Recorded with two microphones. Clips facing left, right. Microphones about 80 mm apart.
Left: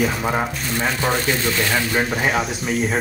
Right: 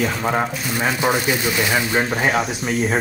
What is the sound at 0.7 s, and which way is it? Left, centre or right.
Speech, centre.